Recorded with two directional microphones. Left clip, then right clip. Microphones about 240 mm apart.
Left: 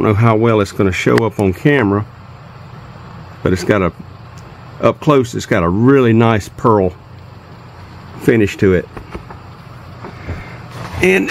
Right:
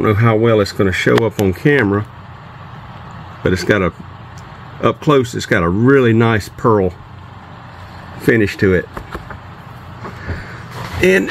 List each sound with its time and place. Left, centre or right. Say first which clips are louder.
0.0 s speech: left 1 dB; centre
3.4 s speech: even; centre
8.2 s speech: left 1 dB; centre
11.0 s speech: even; centre